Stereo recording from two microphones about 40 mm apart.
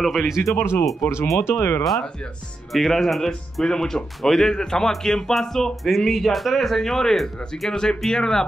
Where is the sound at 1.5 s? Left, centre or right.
Left.